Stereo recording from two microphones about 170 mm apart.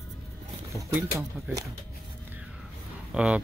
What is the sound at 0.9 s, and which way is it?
Speech, 5° right (ahead or behind).